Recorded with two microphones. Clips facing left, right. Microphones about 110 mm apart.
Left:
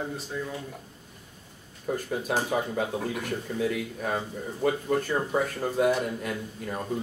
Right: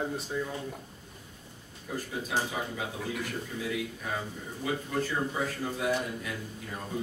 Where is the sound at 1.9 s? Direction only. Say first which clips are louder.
Left 5 dB; 55° left (ahead or behind).